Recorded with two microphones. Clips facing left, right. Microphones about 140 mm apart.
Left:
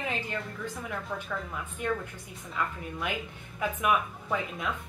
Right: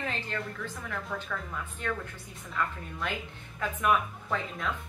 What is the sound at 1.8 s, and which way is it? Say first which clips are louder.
A woman's voice: left 4 dB; 15° left (ahead or behind).